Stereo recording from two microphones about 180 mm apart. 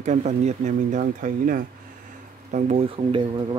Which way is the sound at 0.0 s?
40° right (ahead or behind).